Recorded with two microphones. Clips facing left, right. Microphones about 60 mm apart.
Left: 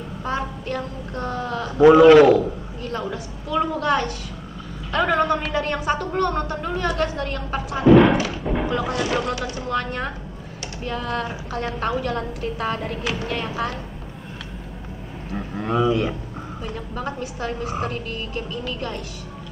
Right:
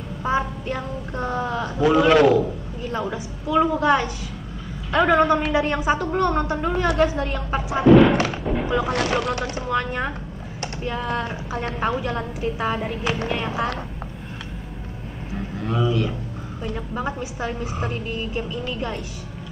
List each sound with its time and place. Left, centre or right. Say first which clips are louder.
0.4 s child singing: right 1 dB; centre
2.0 s a man's voice: left 2 dB; centre
15.6 s speech: left 3 dB; left
16.7 s a woman's voice: right 2 dB; centre